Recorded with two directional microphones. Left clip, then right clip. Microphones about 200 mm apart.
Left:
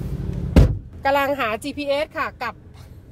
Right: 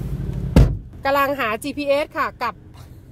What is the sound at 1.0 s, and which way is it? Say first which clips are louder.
Speech: right 1 dB; 5° right (ahead or behind).